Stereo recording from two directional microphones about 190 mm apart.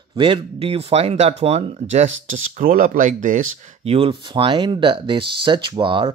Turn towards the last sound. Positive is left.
turn(degrees=-25)  # may be behind; listen again after turning